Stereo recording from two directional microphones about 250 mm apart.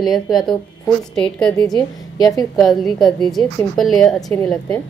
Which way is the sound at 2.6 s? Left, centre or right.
Centre.